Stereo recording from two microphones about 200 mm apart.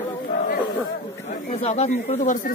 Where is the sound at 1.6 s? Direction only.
35° left (ahead or behind).